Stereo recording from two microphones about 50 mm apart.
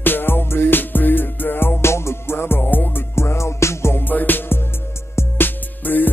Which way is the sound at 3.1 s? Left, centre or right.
Left.